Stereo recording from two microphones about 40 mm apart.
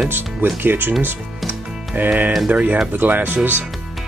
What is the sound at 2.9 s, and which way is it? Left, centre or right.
Speech, right.